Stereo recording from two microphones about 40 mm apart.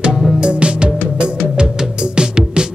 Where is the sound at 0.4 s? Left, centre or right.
Right.